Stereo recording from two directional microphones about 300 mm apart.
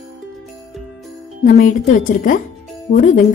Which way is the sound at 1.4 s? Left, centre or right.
Left.